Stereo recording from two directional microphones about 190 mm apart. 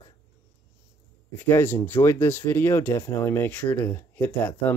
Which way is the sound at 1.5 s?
10° left (ahead or behind).